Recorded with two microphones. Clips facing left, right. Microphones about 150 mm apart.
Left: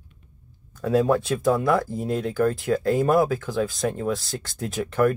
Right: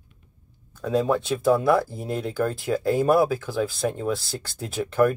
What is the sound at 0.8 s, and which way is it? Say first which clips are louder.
Speech: left 2 dB; centre (ahead or behind).